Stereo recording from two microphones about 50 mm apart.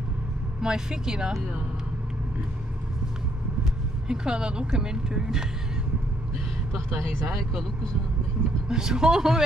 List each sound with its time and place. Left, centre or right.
0.6 s speech: centre
4.1 s speech: centre
8.6 s speech: centre